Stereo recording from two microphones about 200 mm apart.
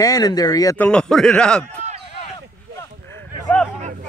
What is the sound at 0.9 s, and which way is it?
Speech, 5° left (ahead or behind).